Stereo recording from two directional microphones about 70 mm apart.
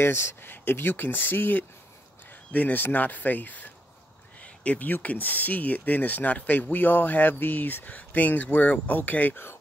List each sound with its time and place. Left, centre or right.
0.0 s speech: left